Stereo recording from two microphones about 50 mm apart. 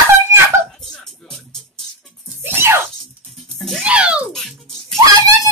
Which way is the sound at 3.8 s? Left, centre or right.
Right.